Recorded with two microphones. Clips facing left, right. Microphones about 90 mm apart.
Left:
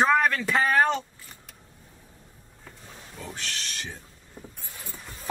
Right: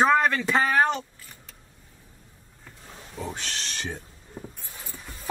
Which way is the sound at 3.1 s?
20° right (ahead or behind).